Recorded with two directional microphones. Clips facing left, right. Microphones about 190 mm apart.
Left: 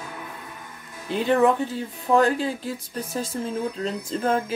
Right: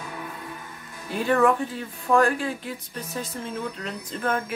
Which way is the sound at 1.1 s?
20° left (ahead or behind).